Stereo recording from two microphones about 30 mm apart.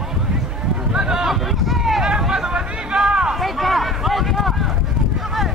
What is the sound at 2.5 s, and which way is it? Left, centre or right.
Hubbub, right.